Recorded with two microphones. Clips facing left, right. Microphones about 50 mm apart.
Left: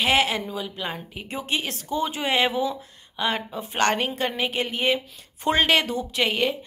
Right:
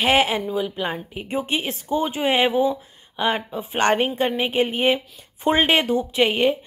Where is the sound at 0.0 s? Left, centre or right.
Right.